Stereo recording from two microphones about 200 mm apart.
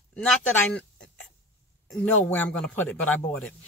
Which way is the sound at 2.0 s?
5° left (ahead or behind).